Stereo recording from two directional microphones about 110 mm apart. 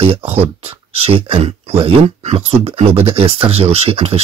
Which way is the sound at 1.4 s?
70° right (ahead or behind).